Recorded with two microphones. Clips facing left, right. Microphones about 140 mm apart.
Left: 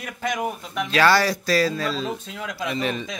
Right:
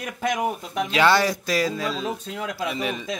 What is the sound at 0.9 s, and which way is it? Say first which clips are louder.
Speech: left 1 dB; 20° right (ahead or behind).